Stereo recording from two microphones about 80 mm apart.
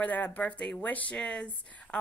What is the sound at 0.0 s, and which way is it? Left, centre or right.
A woman's voice, left.